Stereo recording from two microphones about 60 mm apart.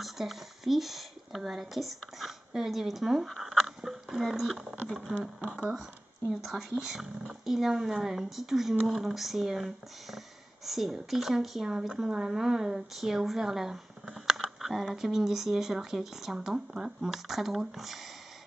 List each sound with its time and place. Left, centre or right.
0.0 s speech: centre
5.4 s speech: centre
6.4 s speech: centre